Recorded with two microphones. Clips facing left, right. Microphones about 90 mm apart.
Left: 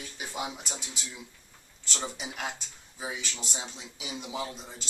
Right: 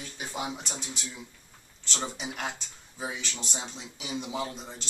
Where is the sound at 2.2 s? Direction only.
5° right (ahead or behind).